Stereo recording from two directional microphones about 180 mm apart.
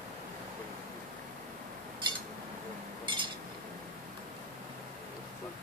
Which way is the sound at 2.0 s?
25° right (ahead or behind).